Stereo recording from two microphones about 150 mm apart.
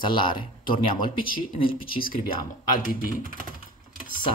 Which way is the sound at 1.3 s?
70° left (ahead or behind).